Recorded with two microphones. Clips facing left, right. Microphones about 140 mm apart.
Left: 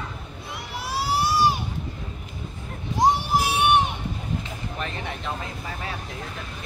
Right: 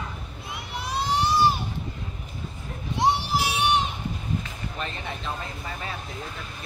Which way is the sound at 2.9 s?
50° left (ahead or behind).